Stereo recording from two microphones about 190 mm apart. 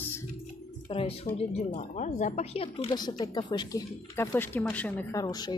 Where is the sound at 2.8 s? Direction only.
20° left (ahead or behind).